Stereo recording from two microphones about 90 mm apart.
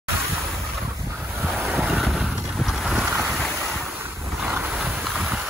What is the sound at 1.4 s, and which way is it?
Vehicle, 10° right (ahead or behind).